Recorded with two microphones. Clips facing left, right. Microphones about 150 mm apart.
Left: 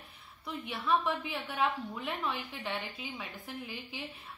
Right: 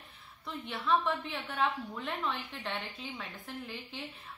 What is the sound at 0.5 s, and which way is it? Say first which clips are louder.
A woman's voice: even; 5° left (ahead or behind).